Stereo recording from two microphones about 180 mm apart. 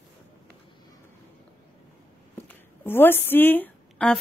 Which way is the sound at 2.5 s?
10° left (ahead or behind).